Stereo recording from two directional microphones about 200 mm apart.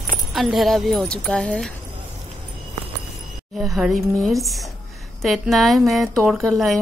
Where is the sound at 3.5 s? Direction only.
Centre (ahead or behind).